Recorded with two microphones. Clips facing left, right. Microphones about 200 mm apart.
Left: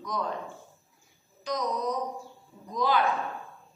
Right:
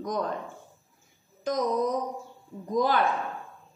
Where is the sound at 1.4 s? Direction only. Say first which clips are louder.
Right 4 dB; 50° right (ahead or behind).